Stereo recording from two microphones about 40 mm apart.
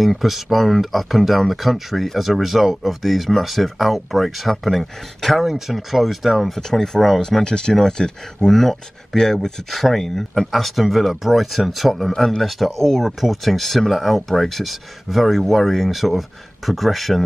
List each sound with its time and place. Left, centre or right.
0.0 s speech: centre
6.7 s speech: centre
9.7 s speech: centre